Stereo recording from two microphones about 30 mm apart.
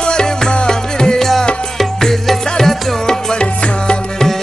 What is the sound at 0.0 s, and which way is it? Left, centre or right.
Music, left.